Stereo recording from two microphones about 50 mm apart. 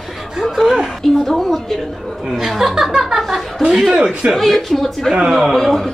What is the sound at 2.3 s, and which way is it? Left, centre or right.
Speech, centre.